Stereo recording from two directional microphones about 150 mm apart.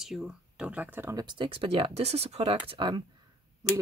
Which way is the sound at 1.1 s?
30° right (ahead or behind).